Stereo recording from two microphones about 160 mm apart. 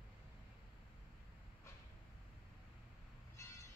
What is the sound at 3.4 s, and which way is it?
Train, 20° left (ahead or behind).